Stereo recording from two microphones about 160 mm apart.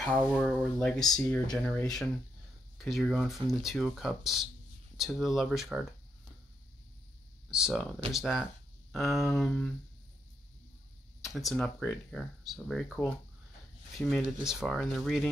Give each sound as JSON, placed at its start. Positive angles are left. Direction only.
{"t": 0.0, "sound": "speech", "side_deg": 0}
{"t": 7.5, "sound": "speech", "side_deg": -5}
{"t": 9.2, "sound": "a sound", "side_deg": 10}
{"t": 11.2, "sound": "speech", "side_deg": 0}